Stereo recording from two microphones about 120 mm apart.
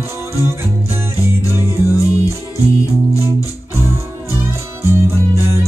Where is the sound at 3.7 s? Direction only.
20° right (ahead or behind).